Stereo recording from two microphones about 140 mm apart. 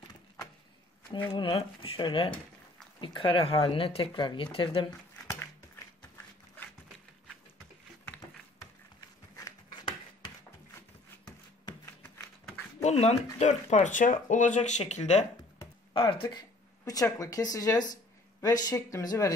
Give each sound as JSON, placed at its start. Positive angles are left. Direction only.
{"t": 1.3, "sound": "speech", "side_deg": 35}
{"t": 12.8, "sound": "speech", "side_deg": 50}
{"t": 15.9, "sound": "speech", "side_deg": 40}